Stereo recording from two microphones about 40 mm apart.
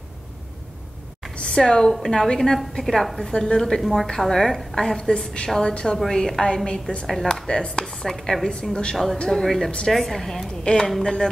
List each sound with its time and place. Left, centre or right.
1.3 s a sound: centre
2.0 s a woman's voice: centre
3.3 s a woman's voice: centre
7.1 s a woman's voice: centre